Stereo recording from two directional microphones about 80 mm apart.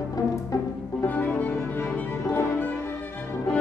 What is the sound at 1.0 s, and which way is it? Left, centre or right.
Music, left.